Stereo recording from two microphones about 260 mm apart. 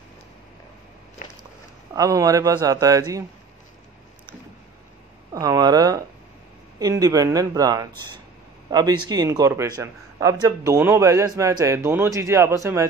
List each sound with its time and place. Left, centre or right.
1.2 s walk: left
2.0 s a man's voice: centre
5.3 s a man's voice: centre